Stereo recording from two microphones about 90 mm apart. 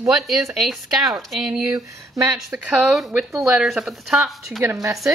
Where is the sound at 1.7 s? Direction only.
35° right (ahead or behind).